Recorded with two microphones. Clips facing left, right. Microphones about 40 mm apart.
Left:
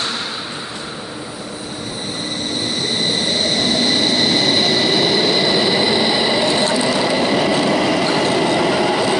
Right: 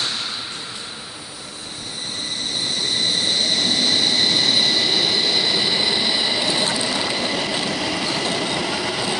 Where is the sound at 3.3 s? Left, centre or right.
Centre.